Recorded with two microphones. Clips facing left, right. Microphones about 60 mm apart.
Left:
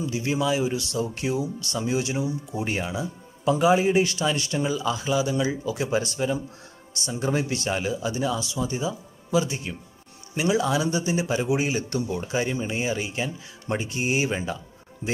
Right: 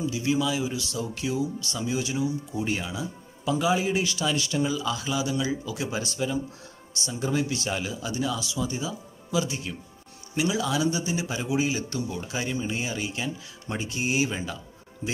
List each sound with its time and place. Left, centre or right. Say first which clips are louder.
0.0 s speech: even; left
4.6 s speech: left 1 dB; left
7.0 s speech: left 1 dB; left
12.3 s speech: left 3 dB; left